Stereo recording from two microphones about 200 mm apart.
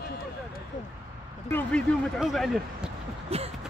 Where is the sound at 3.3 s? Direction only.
30° right (ahead or behind).